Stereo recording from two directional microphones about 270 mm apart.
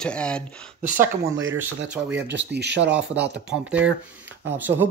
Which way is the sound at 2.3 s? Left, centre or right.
Right.